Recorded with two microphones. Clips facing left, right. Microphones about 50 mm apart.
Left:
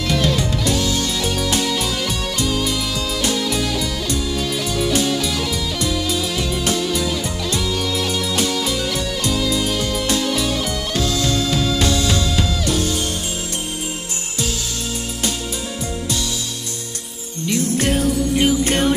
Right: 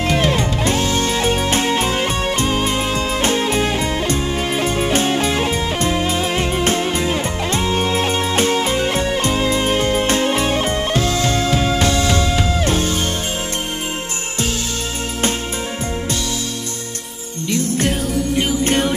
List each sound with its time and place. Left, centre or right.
0.1 s music: right
17.8 s music: centre